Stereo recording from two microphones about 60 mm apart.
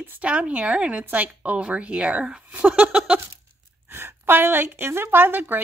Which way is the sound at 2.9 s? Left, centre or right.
Centre.